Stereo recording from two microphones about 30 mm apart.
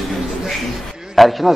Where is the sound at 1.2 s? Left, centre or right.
Centre.